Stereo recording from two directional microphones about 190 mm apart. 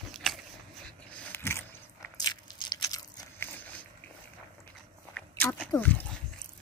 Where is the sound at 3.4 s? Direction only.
10° left (ahead or behind).